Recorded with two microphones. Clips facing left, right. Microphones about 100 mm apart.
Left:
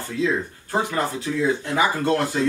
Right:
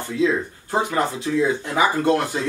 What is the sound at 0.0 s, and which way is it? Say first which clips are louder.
Speech: right 3 dB; 20° right (ahead or behind).